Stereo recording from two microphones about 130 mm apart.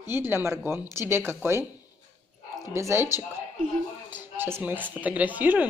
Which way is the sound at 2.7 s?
20° right (ahead or behind).